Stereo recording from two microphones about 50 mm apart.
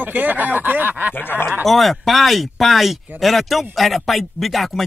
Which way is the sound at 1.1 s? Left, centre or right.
Left.